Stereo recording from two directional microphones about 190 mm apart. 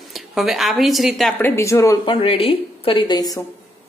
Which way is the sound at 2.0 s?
30° left (ahead or behind).